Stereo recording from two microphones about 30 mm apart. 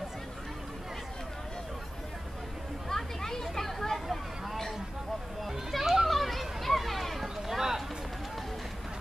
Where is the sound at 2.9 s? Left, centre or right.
Centre.